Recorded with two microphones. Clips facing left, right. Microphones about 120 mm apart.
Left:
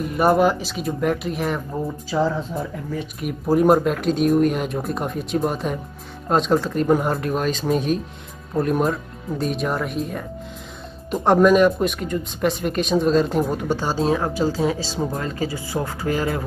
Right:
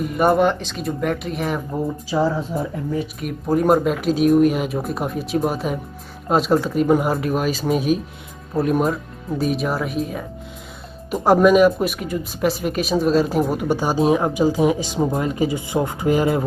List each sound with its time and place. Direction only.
0.0 s speech: centre (ahead or behind)
3.0 s speech: centre (ahead or behind); by 16.4 s 15° right (ahead or behind)